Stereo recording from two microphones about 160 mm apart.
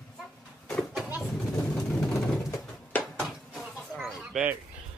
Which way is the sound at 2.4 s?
10° left (ahead or behind).